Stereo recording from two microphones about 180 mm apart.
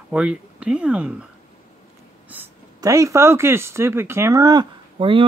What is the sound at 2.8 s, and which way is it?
Speech, 20° right (ahead or behind).